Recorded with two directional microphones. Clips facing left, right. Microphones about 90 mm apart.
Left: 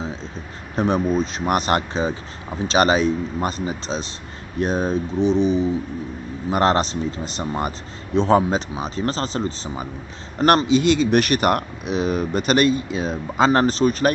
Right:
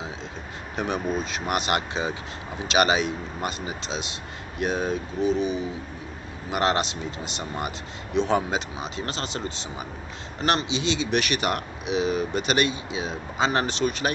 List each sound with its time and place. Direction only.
0.7 s speech: 35° left (ahead or behind)